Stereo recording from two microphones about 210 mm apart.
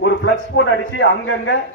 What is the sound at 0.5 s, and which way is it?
A man's voice, 65° left (ahead or behind).